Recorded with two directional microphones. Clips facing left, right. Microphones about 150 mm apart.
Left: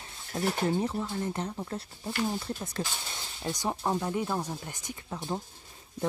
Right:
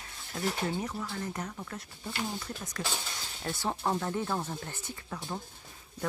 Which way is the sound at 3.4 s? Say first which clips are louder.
Left 1 dB; 15° left (ahead or behind).